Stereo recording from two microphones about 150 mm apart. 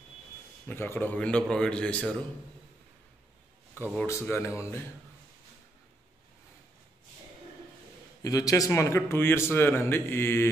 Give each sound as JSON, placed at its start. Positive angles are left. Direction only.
{"t": 0.7, "sound": "a man's voice", "side_deg": 15}
{"t": 3.8, "sound": "a man's voice", "side_deg": 10}
{"t": 8.2, "sound": "a man's voice", "side_deg": 25}